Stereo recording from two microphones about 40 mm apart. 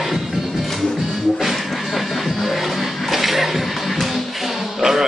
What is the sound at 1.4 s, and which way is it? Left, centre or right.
Music, centre.